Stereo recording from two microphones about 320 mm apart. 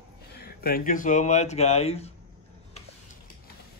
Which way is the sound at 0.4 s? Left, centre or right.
Left.